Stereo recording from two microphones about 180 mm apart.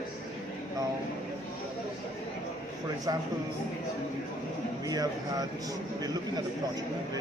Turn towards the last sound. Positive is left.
turn(degrees=-20)  # may be behind; listen again after turning